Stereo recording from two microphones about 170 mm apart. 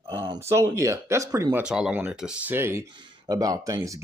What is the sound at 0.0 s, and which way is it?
Speech, 25° right (ahead or behind).